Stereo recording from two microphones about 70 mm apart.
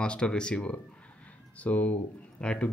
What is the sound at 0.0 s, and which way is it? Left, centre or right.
Speech, centre.